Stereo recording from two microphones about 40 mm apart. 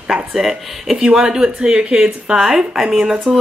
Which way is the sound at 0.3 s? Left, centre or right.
Centre.